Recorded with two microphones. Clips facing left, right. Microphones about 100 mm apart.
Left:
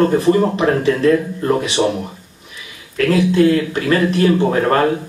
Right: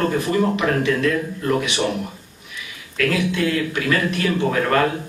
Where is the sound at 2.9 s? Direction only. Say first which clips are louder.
Left 7 dB; 35° left (ahead or behind).